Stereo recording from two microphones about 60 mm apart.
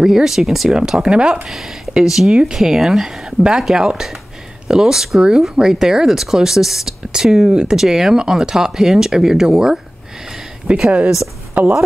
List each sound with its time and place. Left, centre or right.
0.0 s speech: centre
1.5 s a woman's voice: centre